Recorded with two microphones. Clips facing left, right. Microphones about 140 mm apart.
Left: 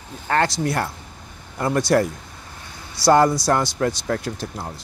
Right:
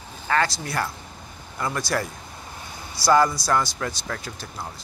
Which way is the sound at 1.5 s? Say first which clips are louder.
Left 6 dB; 60° left (ahead or behind).